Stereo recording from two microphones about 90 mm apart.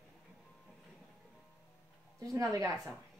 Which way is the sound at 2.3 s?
35° right (ahead or behind).